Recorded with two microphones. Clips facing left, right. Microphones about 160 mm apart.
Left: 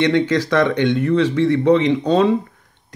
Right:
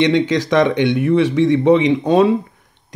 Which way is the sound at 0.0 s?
15° right (ahead or behind).